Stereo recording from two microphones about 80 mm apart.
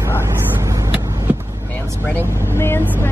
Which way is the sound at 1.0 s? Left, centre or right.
Right.